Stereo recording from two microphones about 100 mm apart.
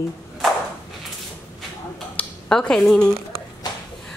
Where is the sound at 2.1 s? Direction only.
10° left (ahead or behind).